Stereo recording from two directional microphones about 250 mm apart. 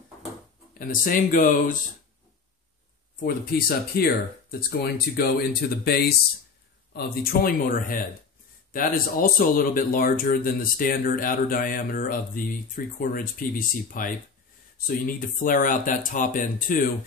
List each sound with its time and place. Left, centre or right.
0.7 s speech: left
3.3 s speech: left